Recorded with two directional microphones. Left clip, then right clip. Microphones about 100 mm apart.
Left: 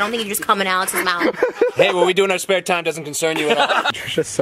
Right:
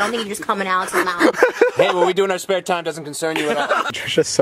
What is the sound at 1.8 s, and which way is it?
Speech, 5° right (ahead or behind).